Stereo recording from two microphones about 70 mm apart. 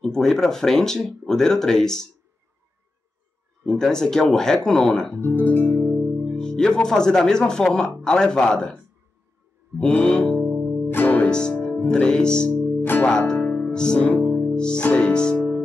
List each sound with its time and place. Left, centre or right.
0.0 s speech: centre
3.6 s speech: centre
5.2 s speech: left
5.9 s speech: centre
9.8 s speech: centre
10.3 s music: right
10.6 s music: centre
10.9 s music: left
11.1 s music: centre
11.9 s speech: centre
13.3 s music: centre